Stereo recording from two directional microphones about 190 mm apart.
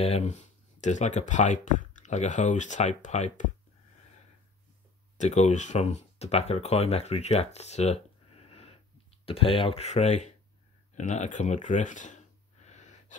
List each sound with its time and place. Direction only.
0.0 s speech: 35° left (ahead or behind)
5.1 s speech: 40° left (ahead or behind)
12.6 s a sound: 40° left (ahead or behind)